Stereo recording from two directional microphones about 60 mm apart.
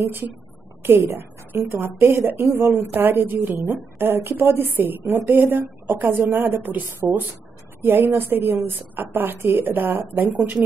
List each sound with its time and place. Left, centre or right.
0.0 s a woman's voice: right